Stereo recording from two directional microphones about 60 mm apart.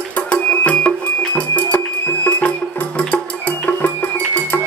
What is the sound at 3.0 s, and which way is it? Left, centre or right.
Music, left.